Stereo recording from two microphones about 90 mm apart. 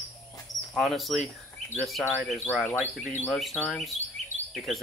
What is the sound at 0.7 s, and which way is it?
Speech, centre (ahead or behind).